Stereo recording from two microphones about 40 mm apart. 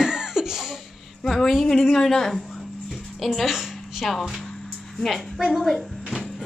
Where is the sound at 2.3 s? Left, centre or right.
Centre.